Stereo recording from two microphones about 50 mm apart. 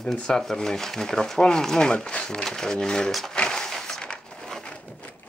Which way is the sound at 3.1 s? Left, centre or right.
Centre.